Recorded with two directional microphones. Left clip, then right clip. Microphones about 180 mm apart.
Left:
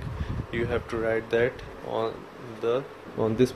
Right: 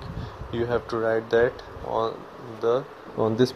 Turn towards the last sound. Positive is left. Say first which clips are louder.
# right 2 dB
turn(degrees=-10)  # may be behind; listen again after turning